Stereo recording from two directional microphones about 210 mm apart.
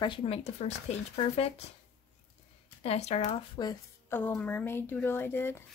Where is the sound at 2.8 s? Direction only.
30° left (ahead or behind).